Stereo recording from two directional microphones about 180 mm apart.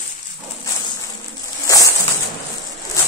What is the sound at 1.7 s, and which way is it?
Music, 20° left (ahead or behind).